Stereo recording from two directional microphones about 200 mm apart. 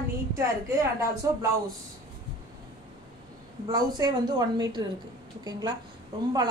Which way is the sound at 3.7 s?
20° right (ahead or behind).